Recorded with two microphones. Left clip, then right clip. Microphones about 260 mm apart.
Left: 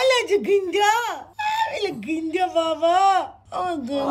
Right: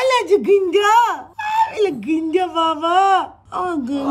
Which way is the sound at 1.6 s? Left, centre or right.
Right.